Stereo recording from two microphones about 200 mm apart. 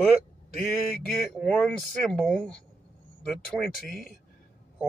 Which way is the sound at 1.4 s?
Centre (ahead or behind).